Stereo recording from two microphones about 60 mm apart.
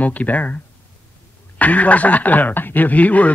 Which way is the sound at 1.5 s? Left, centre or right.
Left.